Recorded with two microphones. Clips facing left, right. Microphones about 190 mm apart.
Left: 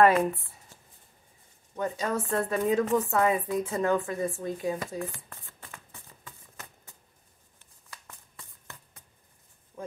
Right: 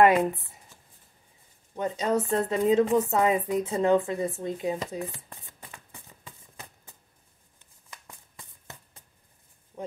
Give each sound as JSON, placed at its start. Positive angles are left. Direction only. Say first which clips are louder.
{"t": 0.0, "sound": "speech", "louder": "right 1 dB", "side_deg": -20}
{"t": 1.8, "sound": "speech", "louder": "right 3 dB", "side_deg": -20}
{"t": 7.5, "sound": "a sound", "louder": "right 1 dB", "side_deg": -15}